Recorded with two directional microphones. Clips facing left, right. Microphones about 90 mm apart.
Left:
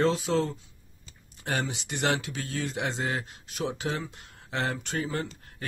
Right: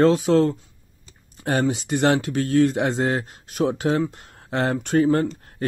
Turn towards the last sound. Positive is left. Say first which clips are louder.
# right 11 dB
turn(degrees=-45)  # may be behind; listen again after turning